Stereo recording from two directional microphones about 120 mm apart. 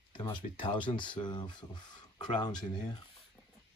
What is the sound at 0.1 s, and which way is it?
Speech, 40° left (ahead or behind).